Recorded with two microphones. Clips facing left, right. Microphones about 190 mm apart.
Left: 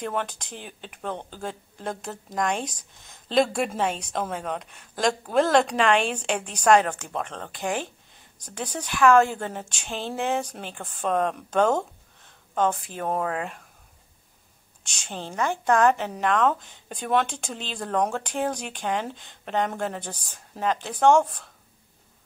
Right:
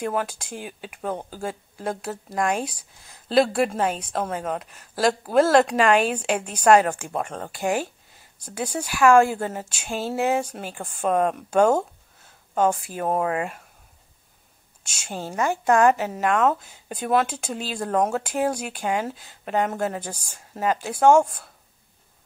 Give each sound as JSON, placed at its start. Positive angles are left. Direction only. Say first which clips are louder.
{"t": 0.0, "sound": "speech", "louder": "right 3 dB", "side_deg": -5}
{"t": 14.8, "sound": "speech", "louder": "right 3 dB", "side_deg": -5}